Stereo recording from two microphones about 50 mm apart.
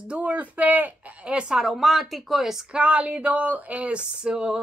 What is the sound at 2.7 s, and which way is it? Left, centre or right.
A woman's voice, right.